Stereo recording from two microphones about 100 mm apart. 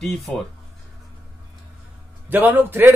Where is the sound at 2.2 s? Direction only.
20° right (ahead or behind).